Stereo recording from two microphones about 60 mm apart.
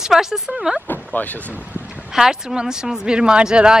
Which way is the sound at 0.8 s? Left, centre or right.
Left.